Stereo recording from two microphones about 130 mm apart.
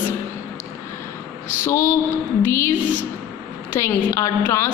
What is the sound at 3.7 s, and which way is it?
Speech, 20° left (ahead or behind).